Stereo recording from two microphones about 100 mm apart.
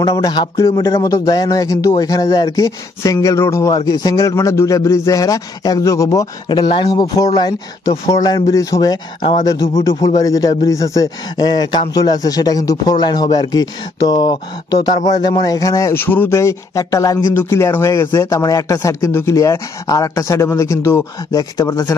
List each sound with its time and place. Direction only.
0.1 s speech: 40° left (ahead or behind)
3.7 s speech: 40° left (ahead or behind)
6.8 s speech: 45° left (ahead or behind)
15.9 s speech: 20° left (ahead or behind)